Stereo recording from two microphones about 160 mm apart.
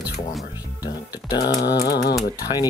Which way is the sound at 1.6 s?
85° left.